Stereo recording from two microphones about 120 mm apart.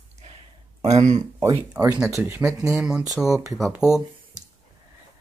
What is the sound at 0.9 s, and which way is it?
Speech, 75° right (ahead or behind).